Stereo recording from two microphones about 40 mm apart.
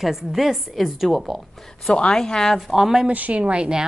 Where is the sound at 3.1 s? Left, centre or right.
Right.